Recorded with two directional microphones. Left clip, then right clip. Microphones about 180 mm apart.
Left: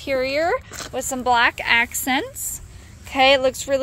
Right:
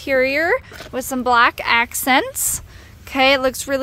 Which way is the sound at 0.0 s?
45° right (ahead or behind).